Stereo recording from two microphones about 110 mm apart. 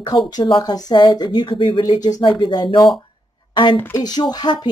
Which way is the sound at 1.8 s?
35° left (ahead or behind).